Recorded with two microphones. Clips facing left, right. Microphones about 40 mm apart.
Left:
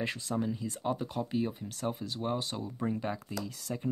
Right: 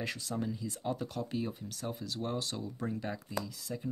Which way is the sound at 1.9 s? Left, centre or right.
Left.